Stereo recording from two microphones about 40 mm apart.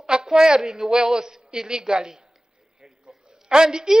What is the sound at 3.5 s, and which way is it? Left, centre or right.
Speech, centre.